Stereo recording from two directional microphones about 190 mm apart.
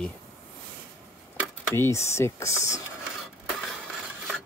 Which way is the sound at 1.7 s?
15° left (ahead or behind).